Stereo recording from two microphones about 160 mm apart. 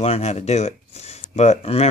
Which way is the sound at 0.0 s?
40° left (ahead or behind).